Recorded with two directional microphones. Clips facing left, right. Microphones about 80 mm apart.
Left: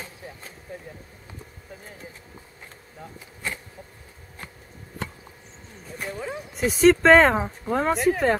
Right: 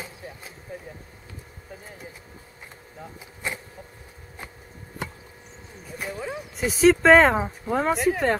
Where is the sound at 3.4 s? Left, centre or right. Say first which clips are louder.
Right 1 dB; centre.